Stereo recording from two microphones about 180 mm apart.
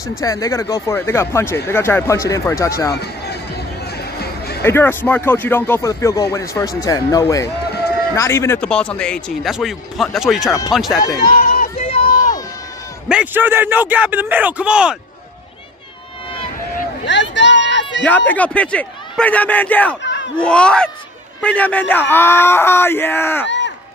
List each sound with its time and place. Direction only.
0.2 s speech: 20° left (ahead or behind)
4.0 s music: 60° left (ahead or behind)
4.6 s speech: 10° left (ahead or behind)
11.1 s a sound: 55° left (ahead or behind)
11.7 s a sound: 35° left (ahead or behind)
13.1 s a man's voice: 10° right (ahead or behind)
17.0 s a sound: 80° left
18.0 s speech: 10° left (ahead or behind)
20.0 s crowd: 80° left
20.3 s speech: 5° left (ahead or behind)